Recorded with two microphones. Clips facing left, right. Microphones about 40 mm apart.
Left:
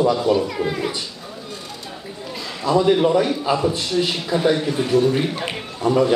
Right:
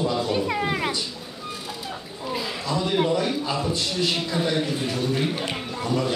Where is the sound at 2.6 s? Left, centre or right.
Centre.